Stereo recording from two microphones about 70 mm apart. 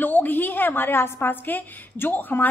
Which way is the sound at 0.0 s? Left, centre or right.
Left.